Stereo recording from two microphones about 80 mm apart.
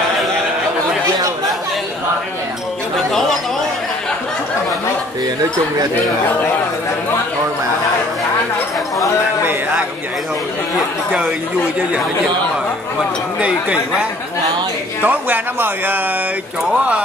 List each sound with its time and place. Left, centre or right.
13.4 s speech: centre